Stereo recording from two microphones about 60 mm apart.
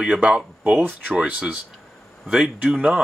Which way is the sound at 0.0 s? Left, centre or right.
Centre.